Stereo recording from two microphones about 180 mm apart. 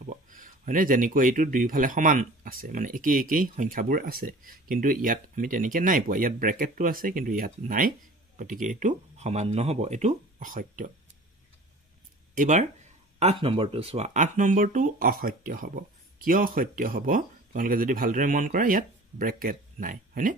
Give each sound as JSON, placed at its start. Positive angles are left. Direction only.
{"t": 0.0, "sound": "speech", "side_deg": -45}
{"t": 12.4, "sound": "speech", "side_deg": -45}
{"t": 13.2, "sound": "speech", "side_deg": -30}